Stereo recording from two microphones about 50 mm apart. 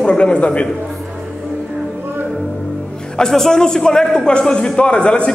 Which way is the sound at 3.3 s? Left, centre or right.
Centre.